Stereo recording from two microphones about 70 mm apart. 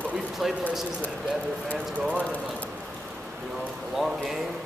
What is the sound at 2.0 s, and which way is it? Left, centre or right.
Speech, centre.